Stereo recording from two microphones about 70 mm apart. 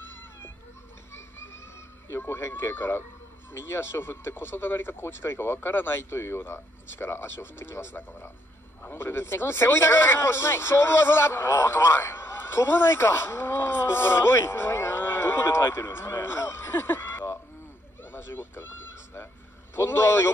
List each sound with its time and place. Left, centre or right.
0.0 s music: left
2.0 s speech: left